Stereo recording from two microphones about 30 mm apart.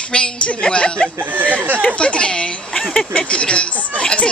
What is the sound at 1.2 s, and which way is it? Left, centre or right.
Speech, right.